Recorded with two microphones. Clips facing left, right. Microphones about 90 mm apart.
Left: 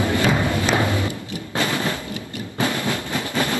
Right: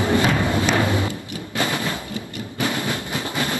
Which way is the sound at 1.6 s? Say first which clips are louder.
Left 1 dB; 20° right (ahead or behind).